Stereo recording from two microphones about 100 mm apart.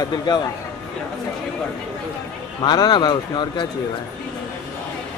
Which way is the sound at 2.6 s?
45° left (ahead or behind).